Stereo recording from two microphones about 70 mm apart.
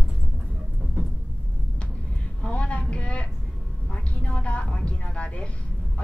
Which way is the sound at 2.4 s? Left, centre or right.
Centre.